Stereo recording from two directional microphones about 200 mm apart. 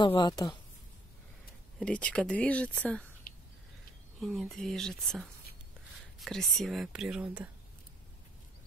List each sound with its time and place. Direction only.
0.0 s a woman's voice: 25° left (ahead or behind)
1.8 s speech: 5° left (ahead or behind)
3.3 s a sound: 50° left (ahead or behind)
4.2 s speech: centre (ahead or behind)